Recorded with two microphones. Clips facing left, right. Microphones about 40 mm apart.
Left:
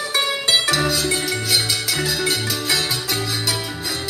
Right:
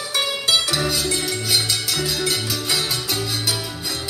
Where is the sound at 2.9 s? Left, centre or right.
Centre.